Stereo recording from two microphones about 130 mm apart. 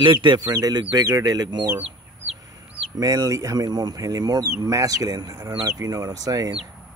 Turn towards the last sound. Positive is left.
turn(degrees=-30)  # may be behind; listen again after turning